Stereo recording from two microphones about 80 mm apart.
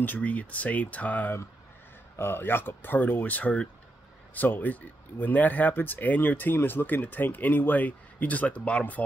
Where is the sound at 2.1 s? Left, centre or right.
Left.